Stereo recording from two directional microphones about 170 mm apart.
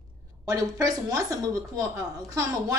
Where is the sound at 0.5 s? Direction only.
20° right (ahead or behind).